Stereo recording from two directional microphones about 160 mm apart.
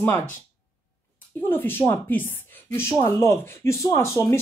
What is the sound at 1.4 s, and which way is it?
Speech, 15° left (ahead or behind).